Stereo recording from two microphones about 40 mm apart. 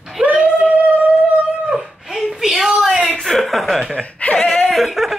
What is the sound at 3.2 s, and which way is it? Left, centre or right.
Chuckle, centre.